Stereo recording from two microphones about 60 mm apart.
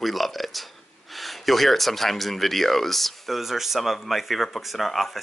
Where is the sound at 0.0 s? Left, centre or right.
Centre.